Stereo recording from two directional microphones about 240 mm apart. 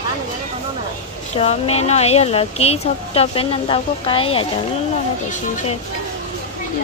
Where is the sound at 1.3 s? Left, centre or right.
Left.